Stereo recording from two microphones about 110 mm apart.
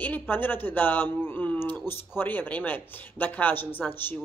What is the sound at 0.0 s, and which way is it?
A man's voice, 15° left (ahead or behind).